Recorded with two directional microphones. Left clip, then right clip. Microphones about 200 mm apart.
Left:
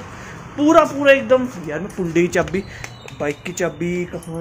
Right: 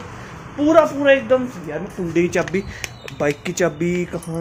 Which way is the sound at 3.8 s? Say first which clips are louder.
Right 2 dB; 15° right (ahead or behind).